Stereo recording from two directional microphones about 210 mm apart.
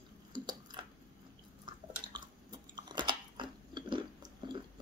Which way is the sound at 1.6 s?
20° right (ahead or behind).